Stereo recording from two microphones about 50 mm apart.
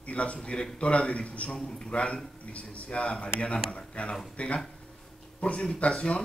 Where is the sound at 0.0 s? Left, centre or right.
Left.